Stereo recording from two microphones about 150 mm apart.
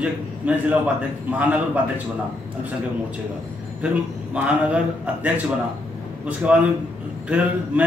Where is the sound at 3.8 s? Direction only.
10° right (ahead or behind).